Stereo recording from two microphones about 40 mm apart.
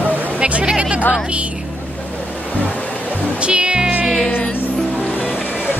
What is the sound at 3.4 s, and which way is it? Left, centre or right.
Music, right.